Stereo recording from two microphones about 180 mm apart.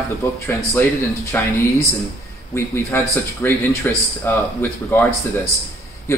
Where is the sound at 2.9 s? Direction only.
10° left (ahead or behind).